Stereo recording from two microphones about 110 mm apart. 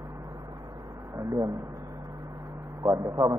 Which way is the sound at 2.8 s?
30° right (ahead or behind).